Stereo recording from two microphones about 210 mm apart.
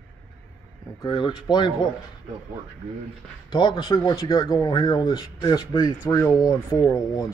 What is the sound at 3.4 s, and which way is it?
Speech, 20° left (ahead or behind).